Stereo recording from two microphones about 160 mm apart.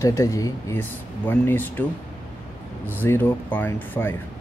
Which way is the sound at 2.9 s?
10° left (ahead or behind).